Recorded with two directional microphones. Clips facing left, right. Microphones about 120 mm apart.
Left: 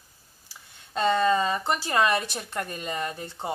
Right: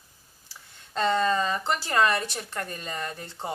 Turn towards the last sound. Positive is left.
turn(degrees=20)  # may be behind; listen again after turning